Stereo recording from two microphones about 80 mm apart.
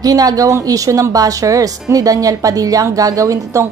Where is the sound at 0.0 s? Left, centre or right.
Right.